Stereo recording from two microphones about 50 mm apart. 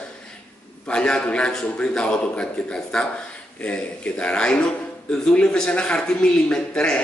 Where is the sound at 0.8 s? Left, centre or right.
Centre.